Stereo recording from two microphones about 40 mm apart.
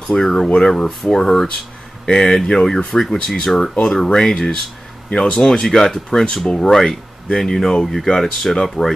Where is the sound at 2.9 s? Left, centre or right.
Centre.